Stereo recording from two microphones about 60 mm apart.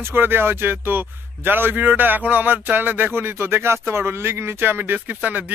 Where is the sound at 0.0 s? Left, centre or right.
Right.